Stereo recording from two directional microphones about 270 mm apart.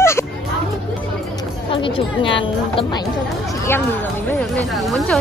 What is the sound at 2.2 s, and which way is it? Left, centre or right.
A woman's voice, centre.